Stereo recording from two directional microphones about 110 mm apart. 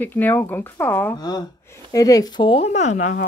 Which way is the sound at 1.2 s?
35° left (ahead or behind).